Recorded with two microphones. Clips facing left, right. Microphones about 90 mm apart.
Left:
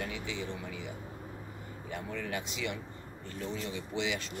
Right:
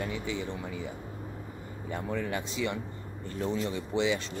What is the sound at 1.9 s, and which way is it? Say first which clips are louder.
Speech: right 5 dB; 35° right (ahead or behind).